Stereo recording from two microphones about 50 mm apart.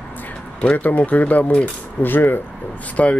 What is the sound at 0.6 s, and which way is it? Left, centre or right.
Speech, left.